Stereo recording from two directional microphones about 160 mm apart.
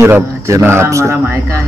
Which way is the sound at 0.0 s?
15° right (ahead or behind).